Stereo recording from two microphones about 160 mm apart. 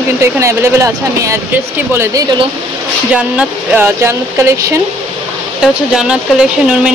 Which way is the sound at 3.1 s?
10° right (ahead or behind).